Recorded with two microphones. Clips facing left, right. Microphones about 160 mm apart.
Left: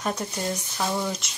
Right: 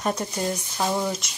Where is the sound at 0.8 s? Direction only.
15° right (ahead or behind).